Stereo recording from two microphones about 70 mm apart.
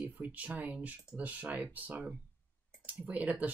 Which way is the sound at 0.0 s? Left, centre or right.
Right.